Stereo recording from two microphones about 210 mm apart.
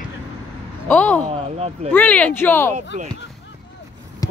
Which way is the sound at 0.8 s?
10° left (ahead or behind).